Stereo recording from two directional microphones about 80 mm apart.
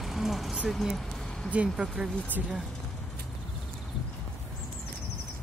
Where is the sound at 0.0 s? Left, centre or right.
Centre.